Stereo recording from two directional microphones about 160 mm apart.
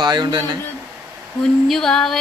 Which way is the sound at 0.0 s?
25° right (ahead or behind).